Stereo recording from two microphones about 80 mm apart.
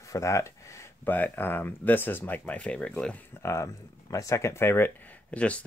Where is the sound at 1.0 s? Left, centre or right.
Left.